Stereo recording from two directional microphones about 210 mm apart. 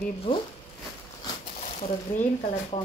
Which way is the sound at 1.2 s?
30° left (ahead or behind).